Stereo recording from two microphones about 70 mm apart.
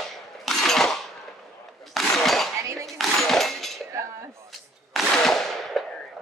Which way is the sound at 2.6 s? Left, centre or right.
Right.